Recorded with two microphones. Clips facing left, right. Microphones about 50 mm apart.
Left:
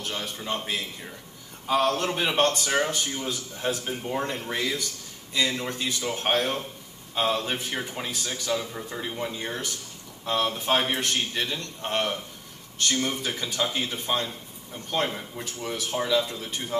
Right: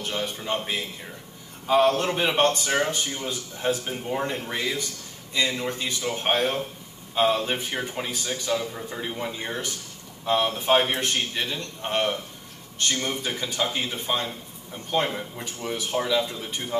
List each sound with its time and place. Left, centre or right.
0.0 s a man's voice: centre
0.5 s a man's voice: centre